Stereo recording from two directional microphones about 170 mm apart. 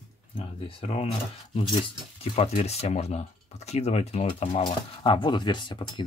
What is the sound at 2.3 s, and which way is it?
Speech, 40° left (ahead or behind).